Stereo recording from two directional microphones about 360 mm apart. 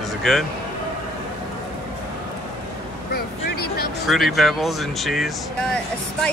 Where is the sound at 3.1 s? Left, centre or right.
Left.